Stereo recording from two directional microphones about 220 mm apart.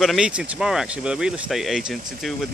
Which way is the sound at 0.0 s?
5° right (ahead or behind).